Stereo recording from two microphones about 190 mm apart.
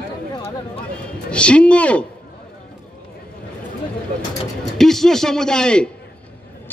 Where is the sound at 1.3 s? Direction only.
5° left (ahead or behind).